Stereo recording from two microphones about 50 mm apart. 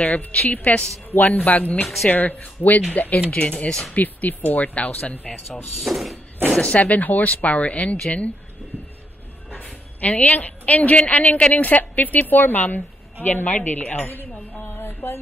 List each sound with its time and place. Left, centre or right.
0.0 s a woman's voice: left
3.3 s speech: left
3.9 s a woman's voice: left
5.8 s speech: centre
6.5 s speech: left
9.5 s a woman's voice: left
14.7 s music: left